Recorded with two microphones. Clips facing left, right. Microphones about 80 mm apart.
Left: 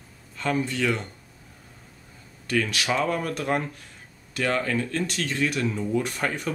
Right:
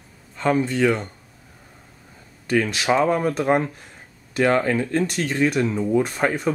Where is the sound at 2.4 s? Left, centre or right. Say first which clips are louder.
Right 5 dB; right.